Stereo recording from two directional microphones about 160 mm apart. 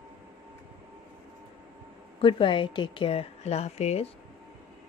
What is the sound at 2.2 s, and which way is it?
Speech, 30° left (ahead or behind).